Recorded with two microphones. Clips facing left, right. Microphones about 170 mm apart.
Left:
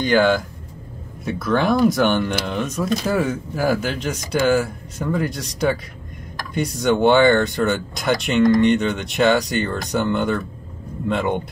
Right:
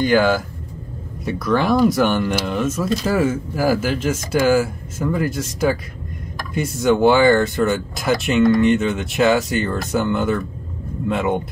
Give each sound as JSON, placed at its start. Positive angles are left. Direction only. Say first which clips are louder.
{"t": 0.0, "sound": "speech", "louder": "right 1 dB", "side_deg": -5}